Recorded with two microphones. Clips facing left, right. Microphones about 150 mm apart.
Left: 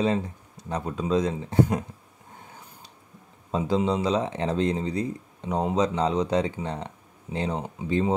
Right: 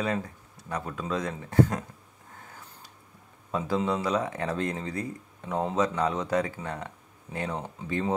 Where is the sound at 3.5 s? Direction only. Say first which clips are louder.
Left 3 dB; 20° left (ahead or behind).